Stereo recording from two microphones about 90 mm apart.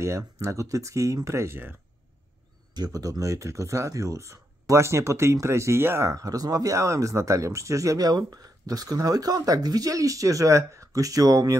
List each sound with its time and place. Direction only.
0.0 s speech: 35° right (ahead or behind)
2.7 s speech: 45° right (ahead or behind)